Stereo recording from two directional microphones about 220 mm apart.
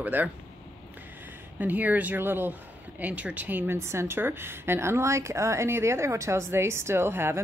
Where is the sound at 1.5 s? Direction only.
5° right (ahead or behind).